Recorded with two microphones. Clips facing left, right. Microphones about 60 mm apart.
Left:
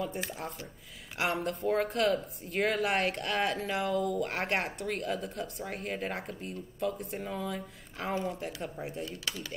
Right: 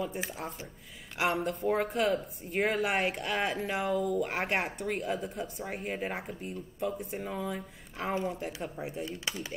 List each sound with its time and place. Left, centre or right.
0.0 s speech: centre
9.0 s speech: right